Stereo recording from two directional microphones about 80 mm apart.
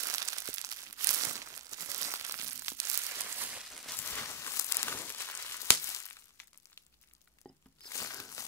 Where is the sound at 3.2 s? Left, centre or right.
Right.